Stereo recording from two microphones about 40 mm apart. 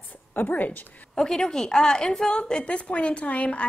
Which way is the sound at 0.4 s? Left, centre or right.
Left.